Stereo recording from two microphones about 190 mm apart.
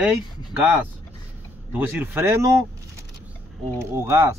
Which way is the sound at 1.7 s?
10° right (ahead or behind).